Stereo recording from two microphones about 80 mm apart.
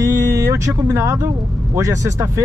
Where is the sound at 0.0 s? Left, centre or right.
Right.